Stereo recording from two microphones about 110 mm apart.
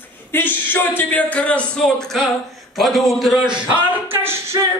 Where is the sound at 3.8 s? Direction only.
20° right (ahead or behind).